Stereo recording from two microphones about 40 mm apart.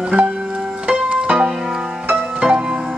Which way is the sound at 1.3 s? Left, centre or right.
Centre.